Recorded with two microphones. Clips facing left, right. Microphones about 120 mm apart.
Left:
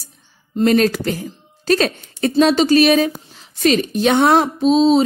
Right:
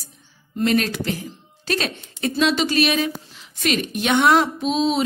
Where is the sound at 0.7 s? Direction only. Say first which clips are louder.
Left 6 dB; 40° left (ahead or behind).